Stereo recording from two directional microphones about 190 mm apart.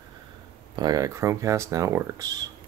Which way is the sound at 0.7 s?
20° right (ahead or behind).